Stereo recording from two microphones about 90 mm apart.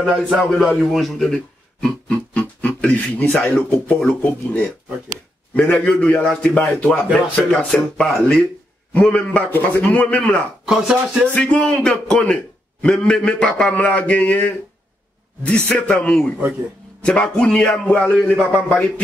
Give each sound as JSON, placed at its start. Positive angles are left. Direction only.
{"t": 0.1, "sound": "a man's voice", "side_deg": -5}
{"t": 10.6, "sound": "speech", "side_deg": -5}
{"t": 11.5, "sound": "a man's voice", "side_deg": 10}